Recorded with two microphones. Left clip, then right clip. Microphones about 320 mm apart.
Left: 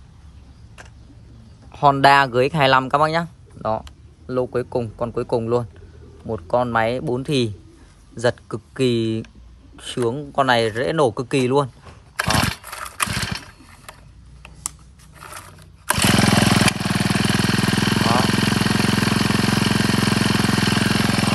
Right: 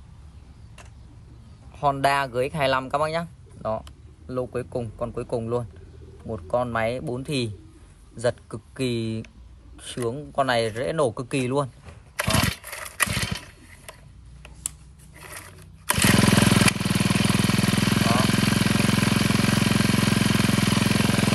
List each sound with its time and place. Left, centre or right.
1.7 s speech: left
12.2 s a sound: centre
15.1 s roaring cats: centre
15.9 s jackhammer: centre